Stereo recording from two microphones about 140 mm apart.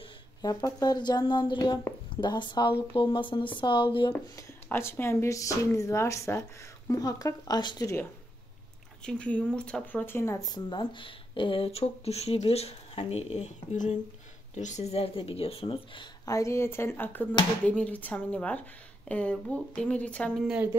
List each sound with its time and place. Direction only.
0.4 s speech: 25° left (ahead or behind)
4.1 s speech: 15° left (ahead or behind); by 7.9 s 30° left (ahead or behind)
9.0 s speech: 5° left (ahead or behind); by 16.1 s 35° left (ahead or behind)
16.3 s speech: 20° left (ahead or behind)
20.4 s a woman's voice: 10° right (ahead or behind)